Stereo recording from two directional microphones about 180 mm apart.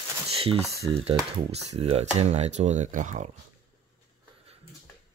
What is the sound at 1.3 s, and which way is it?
Speech, 35° right (ahead or behind).